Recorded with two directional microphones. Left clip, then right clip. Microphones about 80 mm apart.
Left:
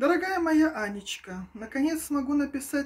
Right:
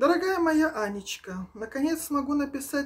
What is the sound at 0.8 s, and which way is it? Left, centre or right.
Speech, right.